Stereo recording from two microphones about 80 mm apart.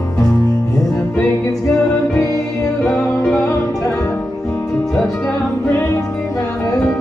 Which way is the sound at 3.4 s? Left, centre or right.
Left.